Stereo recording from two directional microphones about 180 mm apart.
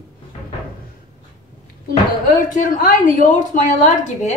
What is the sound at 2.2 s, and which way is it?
A woman's voice, 50° left (ahead or behind).